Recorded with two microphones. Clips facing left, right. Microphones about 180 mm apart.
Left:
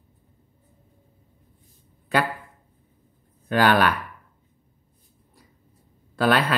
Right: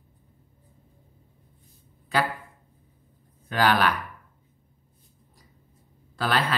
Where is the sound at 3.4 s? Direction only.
55° left (ahead or behind).